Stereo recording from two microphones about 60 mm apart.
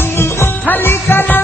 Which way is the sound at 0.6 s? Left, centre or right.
Left.